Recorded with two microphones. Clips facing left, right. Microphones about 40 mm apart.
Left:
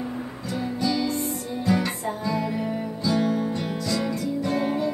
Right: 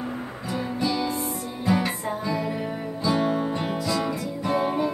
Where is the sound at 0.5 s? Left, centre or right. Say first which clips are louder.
Even; centre.